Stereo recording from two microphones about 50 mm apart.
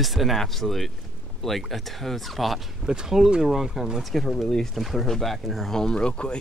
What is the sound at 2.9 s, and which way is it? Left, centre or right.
Speech, centre.